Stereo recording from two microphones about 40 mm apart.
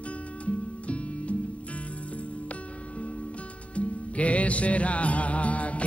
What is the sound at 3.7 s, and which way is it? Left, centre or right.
Music, left.